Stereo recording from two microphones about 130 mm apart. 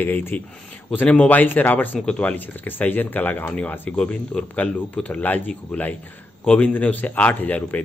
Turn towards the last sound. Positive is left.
turn(degrees=10)  # may be behind; listen again after turning